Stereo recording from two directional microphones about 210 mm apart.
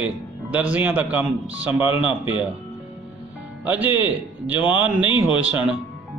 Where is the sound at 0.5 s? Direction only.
5° right (ahead or behind).